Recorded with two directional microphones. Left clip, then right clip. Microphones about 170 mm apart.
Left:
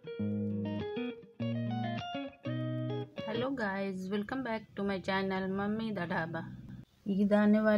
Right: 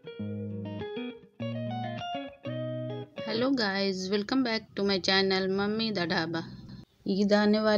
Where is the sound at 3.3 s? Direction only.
15° right (ahead or behind).